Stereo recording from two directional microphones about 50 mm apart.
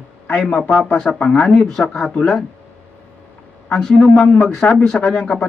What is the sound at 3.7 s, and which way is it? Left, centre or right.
Speech, centre.